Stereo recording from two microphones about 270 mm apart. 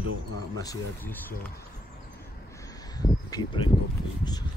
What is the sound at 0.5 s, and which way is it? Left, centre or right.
Speech, centre.